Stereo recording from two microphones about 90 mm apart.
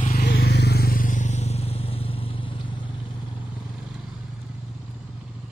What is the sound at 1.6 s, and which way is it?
Vehicle, 90° left.